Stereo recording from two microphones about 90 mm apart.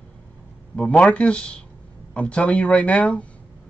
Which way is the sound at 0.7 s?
10° left (ahead or behind).